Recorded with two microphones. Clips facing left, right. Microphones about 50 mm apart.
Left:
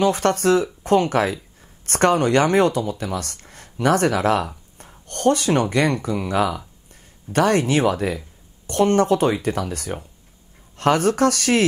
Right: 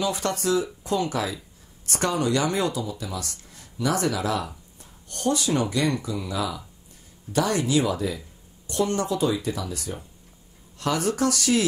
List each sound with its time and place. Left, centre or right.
0.0 s speech: left